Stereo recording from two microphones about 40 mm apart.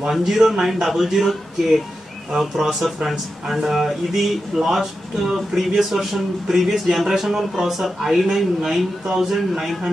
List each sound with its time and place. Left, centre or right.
0.1 s a man's voice: centre
2.3 s a man's voice: centre